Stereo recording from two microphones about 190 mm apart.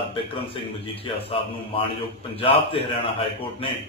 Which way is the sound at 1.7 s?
30° left (ahead or behind).